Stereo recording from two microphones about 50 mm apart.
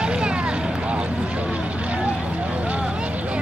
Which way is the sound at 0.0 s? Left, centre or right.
Centre.